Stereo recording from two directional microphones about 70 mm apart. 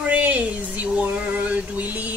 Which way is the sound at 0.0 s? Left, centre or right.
Right.